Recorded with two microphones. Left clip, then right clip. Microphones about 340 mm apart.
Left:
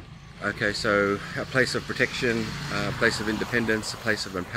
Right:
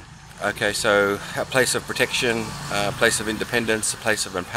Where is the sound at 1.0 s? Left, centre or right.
Right.